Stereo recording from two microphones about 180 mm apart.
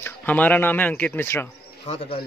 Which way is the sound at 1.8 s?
30° left (ahead or behind).